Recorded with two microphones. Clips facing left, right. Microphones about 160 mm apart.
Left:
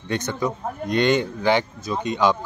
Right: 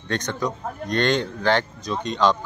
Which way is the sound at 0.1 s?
10° left (ahead or behind).